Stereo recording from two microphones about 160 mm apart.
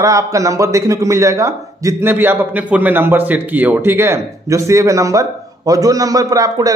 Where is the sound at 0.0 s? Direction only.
20° right (ahead or behind).